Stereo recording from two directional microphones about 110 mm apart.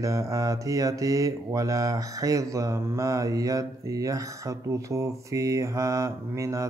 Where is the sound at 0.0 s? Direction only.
30° right (ahead or behind).